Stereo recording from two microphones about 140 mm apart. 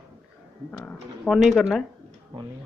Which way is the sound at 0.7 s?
15° left (ahead or behind).